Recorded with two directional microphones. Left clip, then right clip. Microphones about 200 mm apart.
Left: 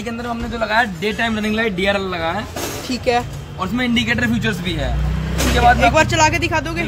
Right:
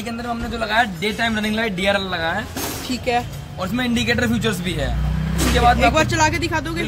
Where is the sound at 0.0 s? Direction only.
5° right (ahead or behind).